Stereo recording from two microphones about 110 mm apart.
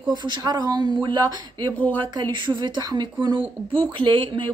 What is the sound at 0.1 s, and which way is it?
Speech, 45° right (ahead or behind).